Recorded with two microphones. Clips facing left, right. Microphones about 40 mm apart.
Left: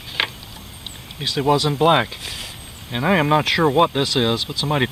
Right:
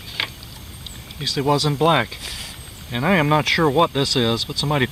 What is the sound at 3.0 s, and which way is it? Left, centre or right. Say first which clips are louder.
Speech: even; centre.